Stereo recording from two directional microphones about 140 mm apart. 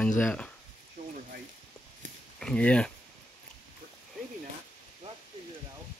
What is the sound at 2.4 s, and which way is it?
Speech, 5° left (ahead or behind).